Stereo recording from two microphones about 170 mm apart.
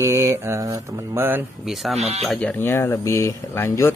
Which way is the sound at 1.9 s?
40° right (ahead or behind).